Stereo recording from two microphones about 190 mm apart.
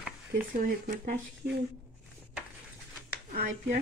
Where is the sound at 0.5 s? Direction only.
45° right (ahead or behind).